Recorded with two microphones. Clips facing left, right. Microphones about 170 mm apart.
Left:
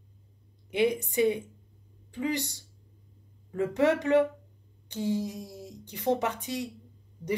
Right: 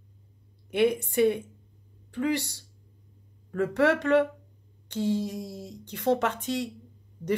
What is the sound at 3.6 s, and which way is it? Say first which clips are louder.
Speech: right 1 dB; 15° left (ahead or behind).